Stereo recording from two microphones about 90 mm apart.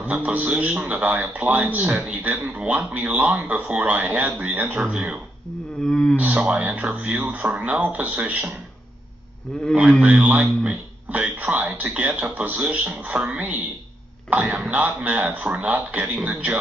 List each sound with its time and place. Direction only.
0.0 s speech: 15° right (ahead or behind)
5.9 s speech: 10° left (ahead or behind)
6.1 s speech: 15° right (ahead or behind)
9.5 s speech: 10° left (ahead or behind)
10.0 s speech: 15° right (ahead or behind)